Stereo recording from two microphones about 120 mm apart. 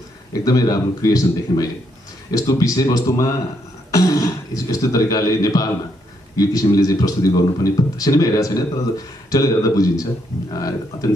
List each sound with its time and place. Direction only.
0.3 s a man's voice: 30° left (ahead or behind)